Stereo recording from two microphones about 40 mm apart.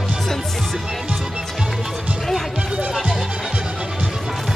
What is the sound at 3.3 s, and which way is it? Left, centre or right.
Music, centre.